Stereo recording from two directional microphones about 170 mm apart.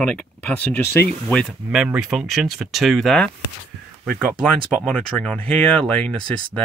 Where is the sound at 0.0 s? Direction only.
10° left (ahead or behind).